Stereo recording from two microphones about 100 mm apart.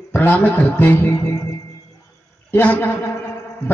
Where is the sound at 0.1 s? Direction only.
20° left (ahead or behind).